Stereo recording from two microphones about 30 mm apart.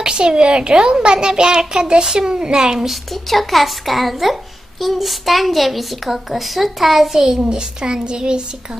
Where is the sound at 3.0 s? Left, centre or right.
Centre.